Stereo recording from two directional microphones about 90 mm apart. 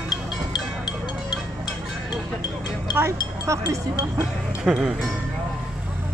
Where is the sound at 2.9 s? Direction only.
30° right (ahead or behind).